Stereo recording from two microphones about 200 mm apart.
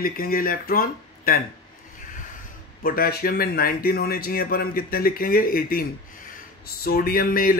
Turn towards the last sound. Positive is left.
turn(degrees=45)  # may be behind; listen again after turning